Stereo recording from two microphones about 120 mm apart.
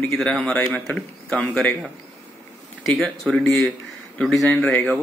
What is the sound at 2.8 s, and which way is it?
Speech, centre (ahead or behind).